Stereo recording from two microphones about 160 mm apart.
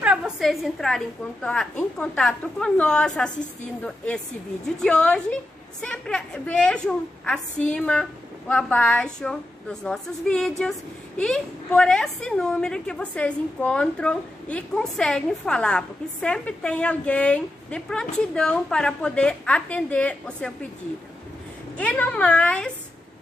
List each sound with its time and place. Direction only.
0.0 s a woman's voice: 5° right (ahead or behind)
21.7 s a woman's voice: 10° left (ahead or behind)